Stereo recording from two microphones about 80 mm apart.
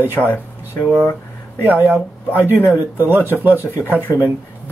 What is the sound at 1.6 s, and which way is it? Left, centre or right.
Speech, right.